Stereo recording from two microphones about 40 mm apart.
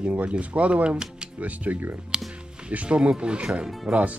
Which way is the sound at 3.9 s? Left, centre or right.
Right.